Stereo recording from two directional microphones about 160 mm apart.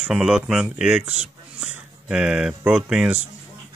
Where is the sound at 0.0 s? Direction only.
5° right (ahead or behind).